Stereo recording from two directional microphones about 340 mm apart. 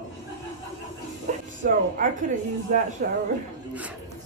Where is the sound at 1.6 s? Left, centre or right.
Right.